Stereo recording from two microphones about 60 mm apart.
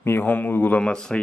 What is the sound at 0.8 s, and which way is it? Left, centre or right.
Speech, centre.